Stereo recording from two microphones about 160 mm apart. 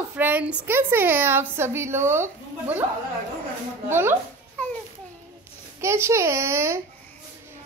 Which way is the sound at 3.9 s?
15° right (ahead or behind).